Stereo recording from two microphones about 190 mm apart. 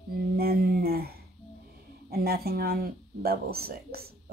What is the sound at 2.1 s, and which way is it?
Speech, 55° right (ahead or behind).